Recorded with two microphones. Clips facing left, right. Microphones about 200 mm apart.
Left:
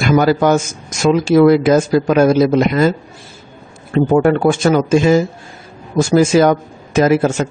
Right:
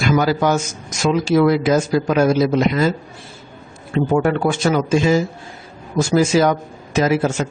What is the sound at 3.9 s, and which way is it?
Speech, 50° left (ahead or behind).